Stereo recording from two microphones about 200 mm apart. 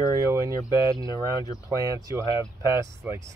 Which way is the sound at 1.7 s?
15° right (ahead or behind).